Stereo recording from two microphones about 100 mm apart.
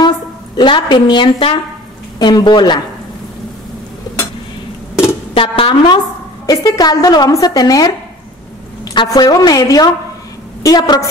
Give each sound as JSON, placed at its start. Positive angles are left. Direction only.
{"t": 0.6, "sound": "a woman's voice", "side_deg": 50}
{"t": 2.1, "sound": "a woman's voice", "side_deg": 45}
{"t": 5.3, "sound": "speech", "side_deg": 65}
{"t": 6.4, "sound": "a woman's voice", "side_deg": 35}
{"t": 8.9, "sound": "a woman's voice", "side_deg": 40}